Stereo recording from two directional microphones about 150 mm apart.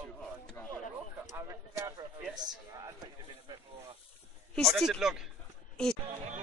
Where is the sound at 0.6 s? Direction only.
15° left (ahead or behind).